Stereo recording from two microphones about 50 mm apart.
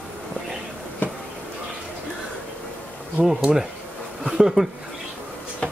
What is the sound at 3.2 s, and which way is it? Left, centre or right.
Speech, centre.